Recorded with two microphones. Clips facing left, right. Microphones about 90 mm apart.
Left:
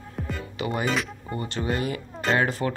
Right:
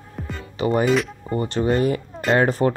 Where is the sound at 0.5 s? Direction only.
40° right (ahead or behind).